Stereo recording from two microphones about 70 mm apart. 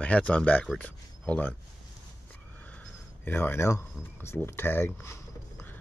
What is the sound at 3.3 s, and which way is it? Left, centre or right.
Speech, left.